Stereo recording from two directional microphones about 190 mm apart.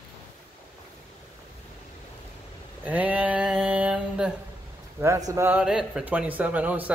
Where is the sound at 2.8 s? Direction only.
10° right (ahead or behind).